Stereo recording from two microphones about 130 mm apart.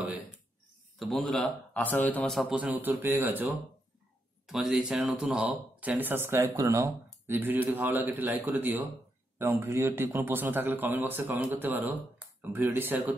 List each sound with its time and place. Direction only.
0.9 s speech: centre (ahead or behind)
2.5 s speech: 15° right (ahead or behind)
4.5 s speech: centre (ahead or behind)